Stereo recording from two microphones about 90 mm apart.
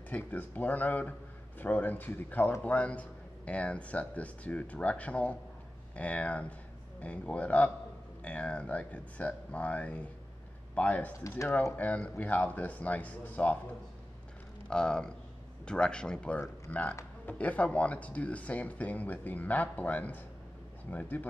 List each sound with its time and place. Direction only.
0.1 s speech: 20° left (ahead or behind)
14.7 s speech: 10° left (ahead or behind)